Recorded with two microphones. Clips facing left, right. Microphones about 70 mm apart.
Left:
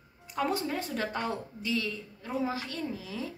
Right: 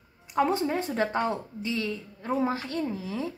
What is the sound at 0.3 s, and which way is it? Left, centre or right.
A woman's voice, right.